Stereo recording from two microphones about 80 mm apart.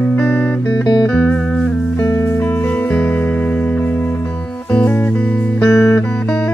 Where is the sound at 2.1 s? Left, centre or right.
Left.